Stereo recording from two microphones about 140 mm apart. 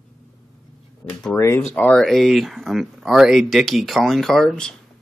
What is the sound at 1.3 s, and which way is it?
Speech, 20° left (ahead or behind).